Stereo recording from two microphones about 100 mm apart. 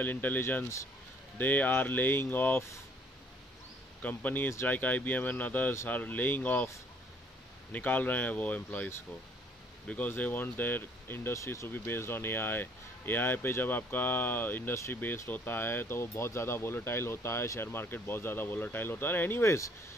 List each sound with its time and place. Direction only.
0.0 s speech: 20° left (ahead or behind)
4.0 s speech: 15° left (ahead or behind)
7.7 s speech: 15° left (ahead or behind)